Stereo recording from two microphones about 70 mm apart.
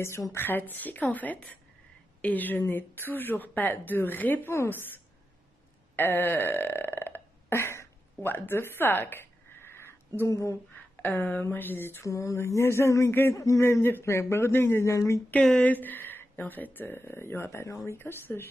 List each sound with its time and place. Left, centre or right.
0.3 s speech: left
5.9 s burping: left
10.2 s speech: left
11.0 s speech: left
12.1 s speech: left
17.9 s speech: left